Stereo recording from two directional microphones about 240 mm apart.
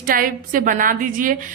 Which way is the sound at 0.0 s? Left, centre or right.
Right.